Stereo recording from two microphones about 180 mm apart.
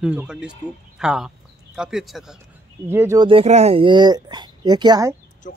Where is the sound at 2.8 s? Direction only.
15° right (ahead or behind).